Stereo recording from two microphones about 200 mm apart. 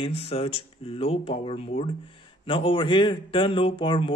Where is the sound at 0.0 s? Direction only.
30° left (ahead or behind).